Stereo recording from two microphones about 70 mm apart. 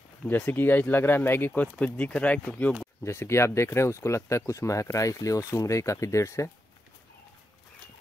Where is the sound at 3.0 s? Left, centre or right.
Left.